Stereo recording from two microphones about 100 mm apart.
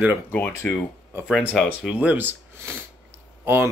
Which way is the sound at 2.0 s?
15° right (ahead or behind).